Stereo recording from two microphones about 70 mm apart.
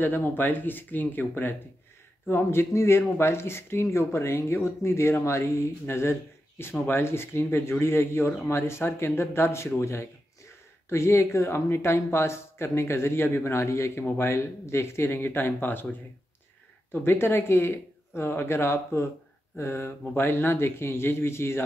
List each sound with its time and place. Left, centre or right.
0.0 s speech: left